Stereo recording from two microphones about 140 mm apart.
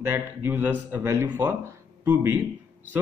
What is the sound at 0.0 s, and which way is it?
Speech, 15° right (ahead or behind).